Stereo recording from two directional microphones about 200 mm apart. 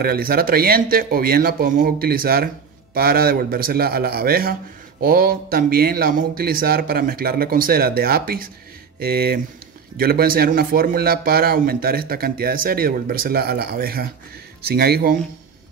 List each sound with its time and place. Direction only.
0.0 s speech: 50° right (ahead or behind)